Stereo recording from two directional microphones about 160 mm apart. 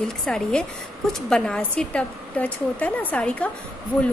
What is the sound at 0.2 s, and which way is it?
A woman's voice, 5° left (ahead or behind).